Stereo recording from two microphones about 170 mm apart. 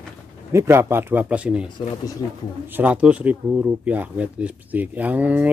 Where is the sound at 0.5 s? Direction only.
15° right (ahead or behind).